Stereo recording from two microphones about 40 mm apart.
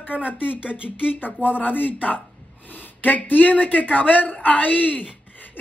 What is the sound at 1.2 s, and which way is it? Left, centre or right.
Speech, left.